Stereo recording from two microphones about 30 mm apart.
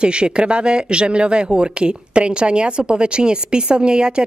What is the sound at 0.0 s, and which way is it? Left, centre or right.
Speech, right.